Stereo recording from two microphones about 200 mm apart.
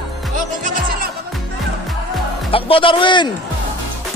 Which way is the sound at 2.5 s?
25° left (ahead or behind).